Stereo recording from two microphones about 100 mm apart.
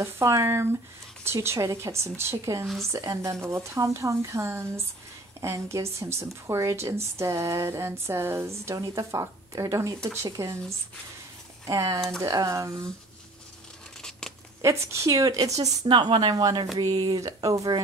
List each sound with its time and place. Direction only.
0.0 s a woman's voice: 30° right (ahead or behind)
2.6 s speech: centre (ahead or behind)
2.9 s a woman's voice: 30° right (ahead or behind)
11.6 s speech: 30° right (ahead or behind)
14.6 s speech: 30° right (ahead or behind)
15.9 s speech: 50° right (ahead or behind)
16.7 s speech: 40° right (ahead or behind)